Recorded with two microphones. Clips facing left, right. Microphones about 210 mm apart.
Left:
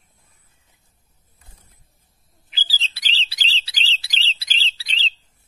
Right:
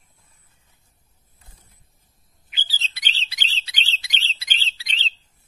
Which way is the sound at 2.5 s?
30° left (ahead or behind).